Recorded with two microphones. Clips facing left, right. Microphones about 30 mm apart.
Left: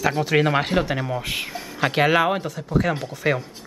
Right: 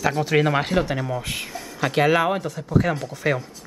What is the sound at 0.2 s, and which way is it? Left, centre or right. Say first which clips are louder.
Speech: even; centre.